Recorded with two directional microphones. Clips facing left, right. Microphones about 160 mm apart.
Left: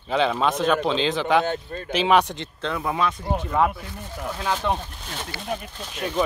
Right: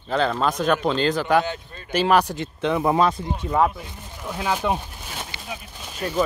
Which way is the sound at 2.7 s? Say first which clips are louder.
Right 6 dB; 30° right (ahead or behind).